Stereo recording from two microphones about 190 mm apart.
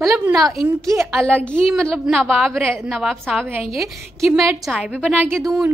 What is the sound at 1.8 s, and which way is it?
A woman's voice, centre (ahead or behind).